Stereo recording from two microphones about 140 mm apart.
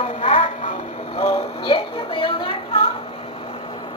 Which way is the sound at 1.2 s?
30° left (ahead or behind).